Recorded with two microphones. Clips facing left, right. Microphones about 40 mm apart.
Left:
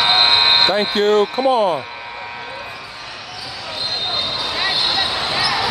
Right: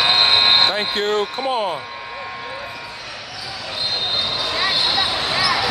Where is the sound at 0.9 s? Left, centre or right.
Left.